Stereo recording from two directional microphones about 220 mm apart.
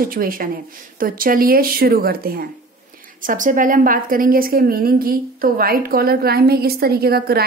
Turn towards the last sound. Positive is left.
turn(degrees=-45)  # may be behind; listen again after turning